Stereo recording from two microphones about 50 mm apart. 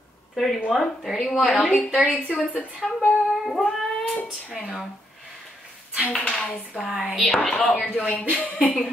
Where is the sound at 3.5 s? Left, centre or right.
Centre.